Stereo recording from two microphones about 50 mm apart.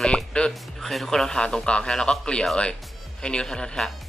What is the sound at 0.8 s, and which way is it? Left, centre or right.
A man's voice, centre.